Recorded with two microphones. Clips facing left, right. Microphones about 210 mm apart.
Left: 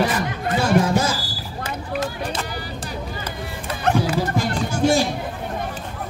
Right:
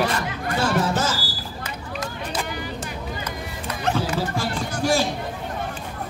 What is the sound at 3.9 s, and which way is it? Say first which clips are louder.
Dog: left 4 dB; 15° left (ahead or behind).